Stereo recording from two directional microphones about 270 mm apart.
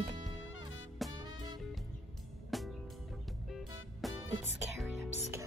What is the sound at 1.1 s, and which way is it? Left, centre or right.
Music, centre.